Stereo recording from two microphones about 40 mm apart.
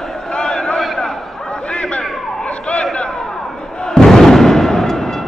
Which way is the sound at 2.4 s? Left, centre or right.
Left.